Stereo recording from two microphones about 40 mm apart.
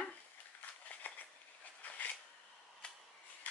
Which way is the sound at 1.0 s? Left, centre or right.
Left.